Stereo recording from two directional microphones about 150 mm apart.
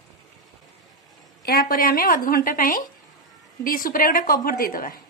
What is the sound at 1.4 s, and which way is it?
A woman's voice, 85° left.